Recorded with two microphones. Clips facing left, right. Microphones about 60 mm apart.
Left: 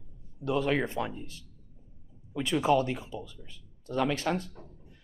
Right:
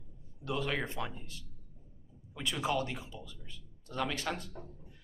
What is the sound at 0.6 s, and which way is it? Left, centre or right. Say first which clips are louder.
Speech: left 7 dB; left.